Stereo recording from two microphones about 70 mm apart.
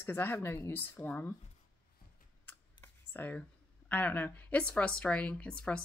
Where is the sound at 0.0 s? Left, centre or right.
Left.